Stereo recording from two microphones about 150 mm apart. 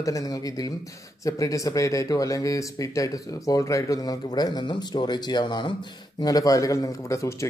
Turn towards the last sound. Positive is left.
turn(degrees=20)  # may be behind; listen again after turning